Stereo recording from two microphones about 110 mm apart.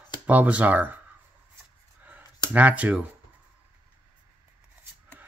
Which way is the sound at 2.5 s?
15° right (ahead or behind).